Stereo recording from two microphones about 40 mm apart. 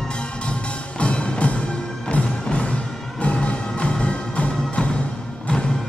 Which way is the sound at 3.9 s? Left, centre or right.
Left.